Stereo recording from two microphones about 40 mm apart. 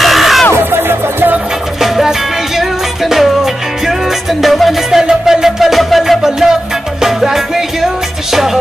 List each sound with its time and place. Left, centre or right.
0.0 s music: centre
0.6 s music: right
1.8 s music: centre
4.9 s music: centre